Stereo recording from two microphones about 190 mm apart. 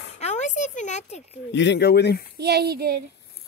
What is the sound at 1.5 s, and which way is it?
Speech, 70° left (ahead or behind).